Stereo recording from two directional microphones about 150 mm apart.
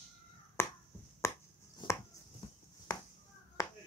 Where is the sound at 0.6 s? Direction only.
15° left (ahead or behind).